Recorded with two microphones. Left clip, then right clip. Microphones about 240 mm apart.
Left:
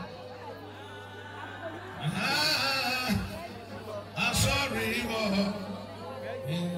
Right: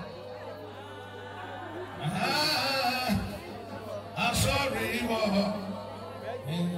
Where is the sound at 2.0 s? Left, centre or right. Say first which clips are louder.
Even; right.